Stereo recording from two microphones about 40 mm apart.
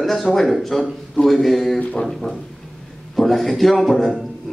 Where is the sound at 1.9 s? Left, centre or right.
Centre.